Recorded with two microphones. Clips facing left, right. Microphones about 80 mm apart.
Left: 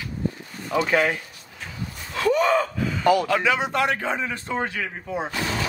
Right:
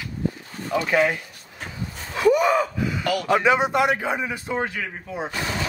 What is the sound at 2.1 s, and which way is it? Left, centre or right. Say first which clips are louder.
Gasp: right 2 dB; centre.